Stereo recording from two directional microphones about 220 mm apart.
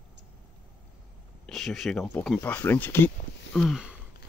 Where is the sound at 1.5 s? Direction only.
Centre (ahead or behind).